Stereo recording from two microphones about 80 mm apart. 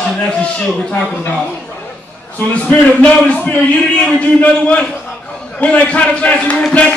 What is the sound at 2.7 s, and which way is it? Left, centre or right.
A man's voice, centre.